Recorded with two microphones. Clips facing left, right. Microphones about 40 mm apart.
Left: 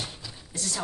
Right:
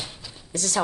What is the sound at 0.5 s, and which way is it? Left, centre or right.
Speech, right.